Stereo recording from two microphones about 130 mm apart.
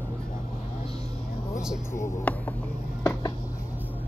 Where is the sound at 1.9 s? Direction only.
15° left (ahead or behind).